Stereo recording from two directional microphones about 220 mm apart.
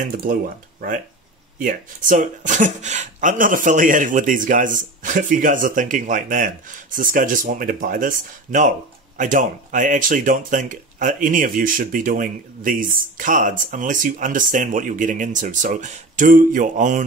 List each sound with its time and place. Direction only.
0.1 s speech: 40° right (ahead or behind)